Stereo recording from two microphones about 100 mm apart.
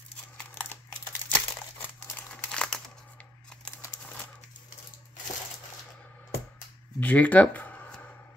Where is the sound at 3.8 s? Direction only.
25° left (ahead or behind).